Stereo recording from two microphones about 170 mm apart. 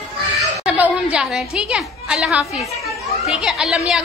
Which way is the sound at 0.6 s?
5° right (ahead or behind).